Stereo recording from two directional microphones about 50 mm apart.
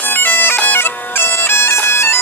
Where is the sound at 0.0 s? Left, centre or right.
Left.